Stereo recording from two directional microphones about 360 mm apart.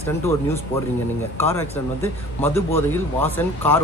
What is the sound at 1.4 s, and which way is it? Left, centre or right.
A man's voice, centre.